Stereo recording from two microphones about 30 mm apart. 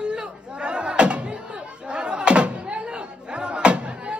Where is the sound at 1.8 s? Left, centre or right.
Right.